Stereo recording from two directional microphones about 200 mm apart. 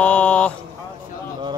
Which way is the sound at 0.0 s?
5° left (ahead or behind).